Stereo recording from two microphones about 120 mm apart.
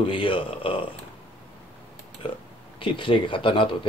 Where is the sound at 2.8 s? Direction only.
45° left (ahead or behind).